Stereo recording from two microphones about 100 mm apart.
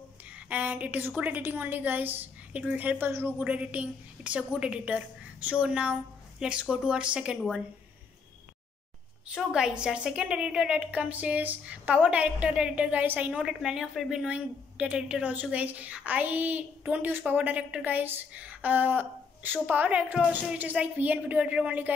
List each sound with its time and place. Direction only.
0.5 s a woman's voice: 15° right (ahead or behind)
9.3 s a woman's voice: 10° right (ahead or behind)
13.3 s a woman's voice: 5° right (ahead or behind)